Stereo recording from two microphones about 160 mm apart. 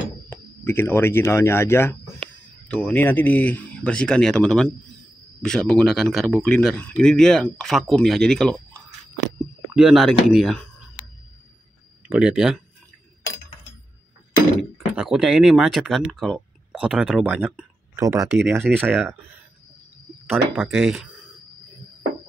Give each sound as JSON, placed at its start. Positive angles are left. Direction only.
{"t": 0.3, "sound": "speech", "side_deg": 15}
{"t": 9.8, "sound": "speech", "side_deg": 0}
{"t": 12.1, "sound": "speech", "side_deg": -5}
{"t": 14.6, "sound": "speech", "side_deg": 0}
{"t": 17.9, "sound": "speech", "side_deg": -20}
{"t": 18.7, "sound": "speech", "side_deg": -80}
{"t": 20.2, "sound": "speech", "side_deg": 0}